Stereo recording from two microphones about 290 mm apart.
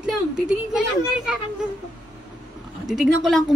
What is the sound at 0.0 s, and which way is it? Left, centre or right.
Speech, centre.